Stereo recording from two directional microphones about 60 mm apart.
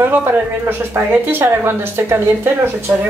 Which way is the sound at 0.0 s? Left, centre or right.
Right.